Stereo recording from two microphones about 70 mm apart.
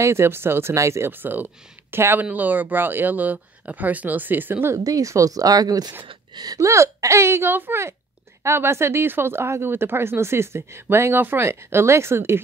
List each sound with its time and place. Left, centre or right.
0.0 s speech: right
1.1 s speech: right
4.7 s speech: right
6.7 s speech: right